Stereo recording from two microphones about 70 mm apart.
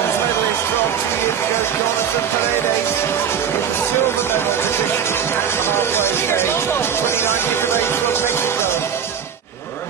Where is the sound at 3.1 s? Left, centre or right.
Left.